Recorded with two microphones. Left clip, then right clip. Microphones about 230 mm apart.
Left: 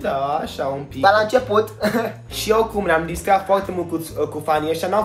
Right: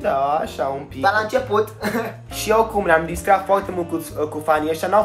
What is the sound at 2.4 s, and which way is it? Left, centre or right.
Speech, centre.